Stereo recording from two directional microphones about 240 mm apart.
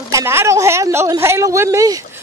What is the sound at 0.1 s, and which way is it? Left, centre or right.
Speech, centre.